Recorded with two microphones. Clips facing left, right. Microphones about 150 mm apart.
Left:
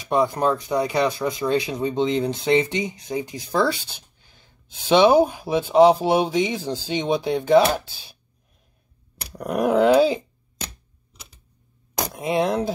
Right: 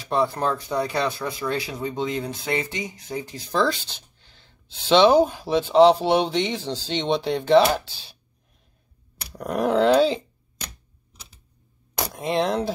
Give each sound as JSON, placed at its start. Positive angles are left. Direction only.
{"t": 0.1, "sound": "speech", "side_deg": 15}
{"t": 9.3, "sound": "speech", "side_deg": 10}
{"t": 12.2, "sound": "speech", "side_deg": 10}